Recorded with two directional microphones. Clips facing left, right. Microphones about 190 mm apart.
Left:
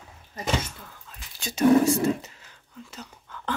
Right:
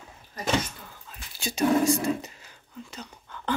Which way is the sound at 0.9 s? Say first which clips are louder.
Right 1 dB; 5° right (ahead or behind).